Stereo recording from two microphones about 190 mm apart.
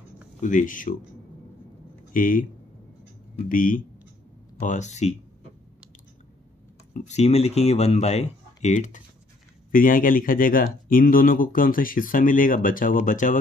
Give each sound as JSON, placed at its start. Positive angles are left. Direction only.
{"t": 0.4, "sound": "speech", "side_deg": 40}
{"t": 2.1, "sound": "speech", "side_deg": 45}
{"t": 3.4, "sound": "speech", "side_deg": 45}
{"t": 6.9, "sound": "speech", "side_deg": 35}